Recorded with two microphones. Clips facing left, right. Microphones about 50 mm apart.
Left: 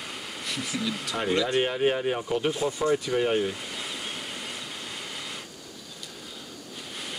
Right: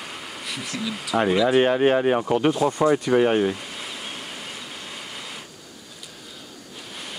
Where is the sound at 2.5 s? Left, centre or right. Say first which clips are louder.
Right 7 dB; right.